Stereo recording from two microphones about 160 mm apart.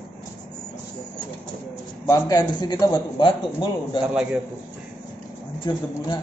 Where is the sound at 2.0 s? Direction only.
20° left (ahead or behind).